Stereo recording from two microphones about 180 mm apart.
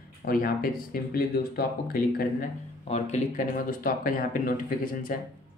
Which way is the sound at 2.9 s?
45° left (ahead or behind).